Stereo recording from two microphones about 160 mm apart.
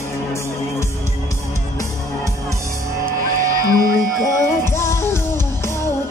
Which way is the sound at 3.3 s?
60° right (ahead or behind).